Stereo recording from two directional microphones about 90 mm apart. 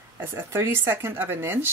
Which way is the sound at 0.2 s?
25° right (ahead or behind).